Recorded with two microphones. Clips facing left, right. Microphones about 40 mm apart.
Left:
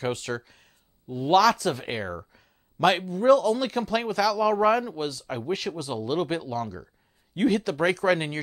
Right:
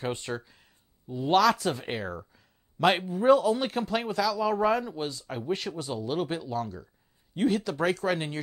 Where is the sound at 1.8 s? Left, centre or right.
Centre.